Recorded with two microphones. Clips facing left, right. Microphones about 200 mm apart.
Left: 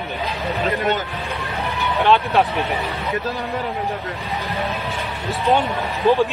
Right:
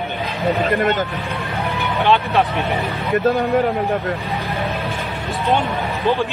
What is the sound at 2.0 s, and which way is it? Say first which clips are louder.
Speech: even; centre (ahead or behind).